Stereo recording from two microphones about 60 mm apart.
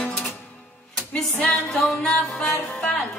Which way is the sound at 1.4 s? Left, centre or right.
Left.